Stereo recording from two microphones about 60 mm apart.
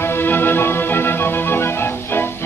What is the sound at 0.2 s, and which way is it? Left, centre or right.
Music, left.